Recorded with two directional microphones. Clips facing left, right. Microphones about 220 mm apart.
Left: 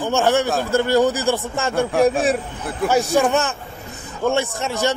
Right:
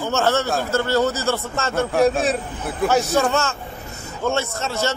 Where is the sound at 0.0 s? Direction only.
15° left (ahead or behind).